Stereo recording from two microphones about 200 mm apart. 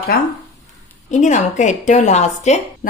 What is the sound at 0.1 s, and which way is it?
Speech, 50° left (ahead or behind).